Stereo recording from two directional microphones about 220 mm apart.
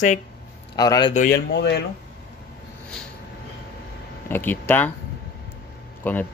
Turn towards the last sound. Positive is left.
turn(degrees=10)  # may be behind; listen again after turning